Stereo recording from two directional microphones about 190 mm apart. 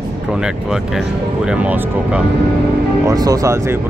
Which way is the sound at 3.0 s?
20° right (ahead or behind).